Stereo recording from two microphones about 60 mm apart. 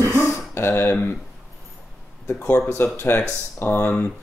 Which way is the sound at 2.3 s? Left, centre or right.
Left.